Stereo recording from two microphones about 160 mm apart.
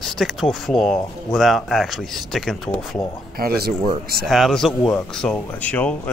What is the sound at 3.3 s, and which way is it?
Speech, 75° right (ahead or behind).